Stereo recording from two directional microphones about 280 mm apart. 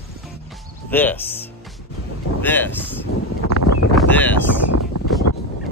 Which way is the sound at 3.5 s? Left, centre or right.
Left.